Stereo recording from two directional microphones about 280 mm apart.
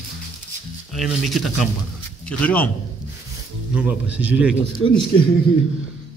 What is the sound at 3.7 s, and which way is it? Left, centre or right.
Speech, centre.